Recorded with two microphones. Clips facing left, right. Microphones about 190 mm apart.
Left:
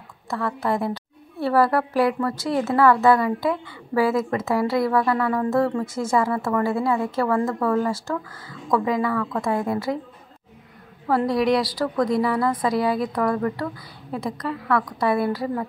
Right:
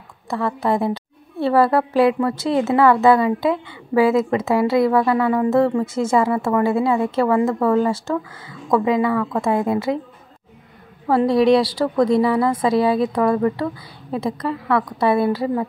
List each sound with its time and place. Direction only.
0.3 s a woman's voice: 25° right (ahead or behind)
11.1 s a woman's voice: 25° right (ahead or behind)